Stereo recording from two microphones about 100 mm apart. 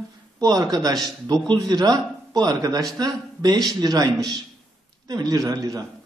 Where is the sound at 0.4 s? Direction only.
40° right (ahead or behind).